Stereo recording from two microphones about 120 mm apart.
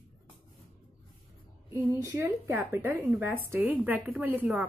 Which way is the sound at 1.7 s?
25° right (ahead or behind).